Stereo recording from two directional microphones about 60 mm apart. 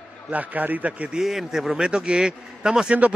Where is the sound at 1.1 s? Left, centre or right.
Centre.